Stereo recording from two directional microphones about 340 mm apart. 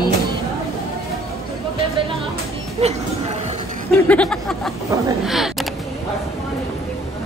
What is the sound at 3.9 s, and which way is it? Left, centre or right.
Speech, centre.